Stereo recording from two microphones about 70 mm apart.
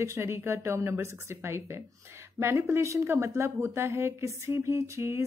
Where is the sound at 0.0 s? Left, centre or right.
Right.